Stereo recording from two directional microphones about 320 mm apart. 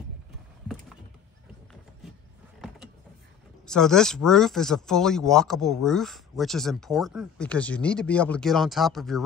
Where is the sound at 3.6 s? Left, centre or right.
Centre.